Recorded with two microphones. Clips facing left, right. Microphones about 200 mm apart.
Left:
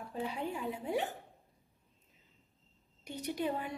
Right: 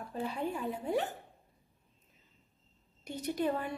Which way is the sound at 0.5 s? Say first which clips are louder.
Right 2 dB; 15° left (ahead or behind).